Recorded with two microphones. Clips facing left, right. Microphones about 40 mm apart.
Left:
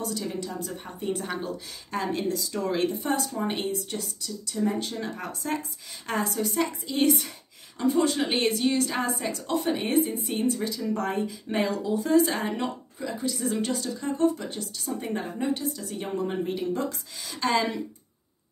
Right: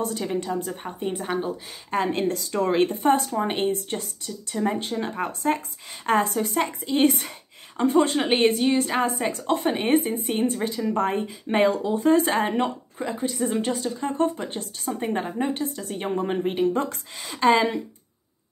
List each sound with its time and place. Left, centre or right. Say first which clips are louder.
0.0 s speech: right 5 dB; right
1.9 s speech: right 4 dB; right
9.2 s speech: right 4 dB; right
10.3 s speech: right 3 dB; right